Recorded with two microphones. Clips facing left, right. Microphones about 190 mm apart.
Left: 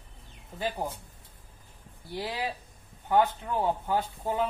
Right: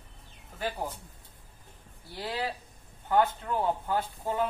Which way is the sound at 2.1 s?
20° left (ahead or behind).